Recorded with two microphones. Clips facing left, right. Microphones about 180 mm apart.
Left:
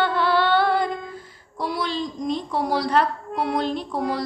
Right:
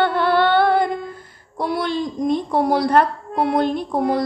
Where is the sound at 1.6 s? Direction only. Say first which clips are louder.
Right 4 dB; 55° right (ahead or behind).